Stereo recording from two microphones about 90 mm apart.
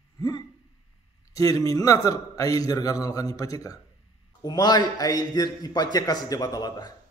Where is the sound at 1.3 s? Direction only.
40° left (ahead or behind).